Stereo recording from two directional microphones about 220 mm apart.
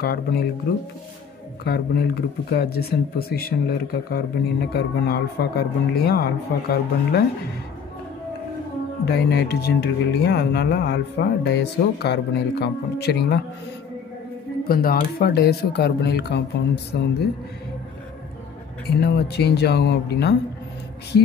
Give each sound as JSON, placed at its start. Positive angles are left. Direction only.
{"t": 0.0, "sound": "speech", "side_deg": 45}
{"t": 1.6, "sound": "speech", "side_deg": 45}
{"t": 9.0, "sound": "speech", "side_deg": 45}
{"t": 14.7, "sound": "speech", "side_deg": 40}
{"t": 18.9, "sound": "speech", "side_deg": 50}